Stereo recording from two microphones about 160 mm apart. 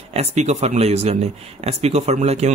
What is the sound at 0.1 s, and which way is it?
Speech, 45° right (ahead or behind).